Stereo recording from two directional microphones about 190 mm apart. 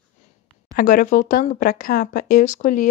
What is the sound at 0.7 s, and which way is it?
Speech, 45° left (ahead or behind).